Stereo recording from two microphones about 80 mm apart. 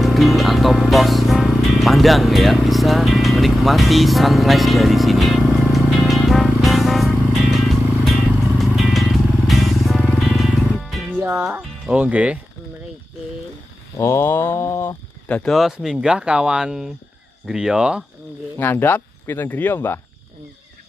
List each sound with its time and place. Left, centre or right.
0.0 s music: centre
11.1 s music: right
11.9 s speech: centre
13.9 s speech: left
15.2 s speech: centre
15.5 s speech: centre
18.6 s speech: left